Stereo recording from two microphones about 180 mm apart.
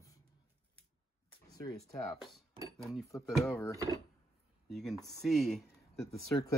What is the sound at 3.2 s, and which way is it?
Speech, centre (ahead or behind).